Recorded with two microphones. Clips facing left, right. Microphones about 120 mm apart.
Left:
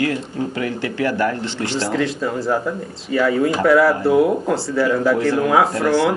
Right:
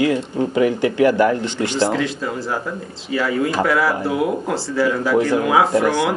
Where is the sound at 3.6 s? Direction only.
Centre (ahead or behind).